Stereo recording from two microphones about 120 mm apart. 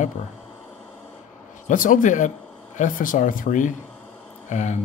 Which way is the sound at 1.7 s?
90° left.